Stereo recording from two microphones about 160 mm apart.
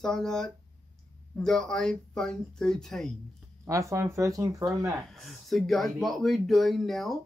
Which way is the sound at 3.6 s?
20° right (ahead or behind).